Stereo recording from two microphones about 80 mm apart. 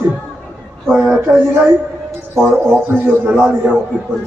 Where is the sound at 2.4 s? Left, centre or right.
Right.